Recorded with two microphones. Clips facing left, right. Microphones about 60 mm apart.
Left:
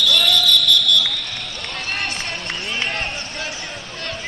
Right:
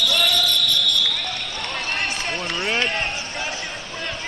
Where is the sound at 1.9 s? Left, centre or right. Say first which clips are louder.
Even; centre.